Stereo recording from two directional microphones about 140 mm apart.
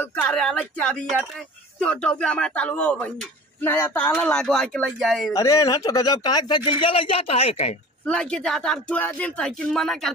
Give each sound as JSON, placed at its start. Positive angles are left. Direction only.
{"t": 0.0, "sound": "speech", "side_deg": 5}
{"t": 5.3, "sound": "speech", "side_deg": 25}
{"t": 8.0, "sound": "speech", "side_deg": 5}